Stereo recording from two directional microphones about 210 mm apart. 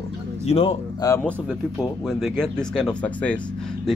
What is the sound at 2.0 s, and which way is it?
Speech, centre (ahead or behind).